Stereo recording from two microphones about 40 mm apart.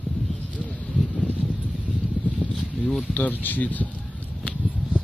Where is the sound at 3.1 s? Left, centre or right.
Left.